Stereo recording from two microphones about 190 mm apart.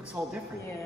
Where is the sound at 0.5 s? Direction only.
15° left (ahead or behind).